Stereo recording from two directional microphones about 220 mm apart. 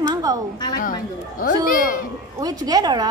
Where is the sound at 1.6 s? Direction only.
40° left (ahead or behind).